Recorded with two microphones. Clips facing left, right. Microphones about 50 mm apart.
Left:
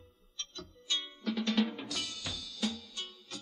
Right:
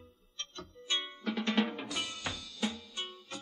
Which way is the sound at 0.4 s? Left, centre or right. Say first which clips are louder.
Right 1 dB; right.